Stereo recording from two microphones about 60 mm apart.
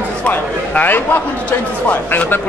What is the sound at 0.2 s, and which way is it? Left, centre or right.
A man's voice, left.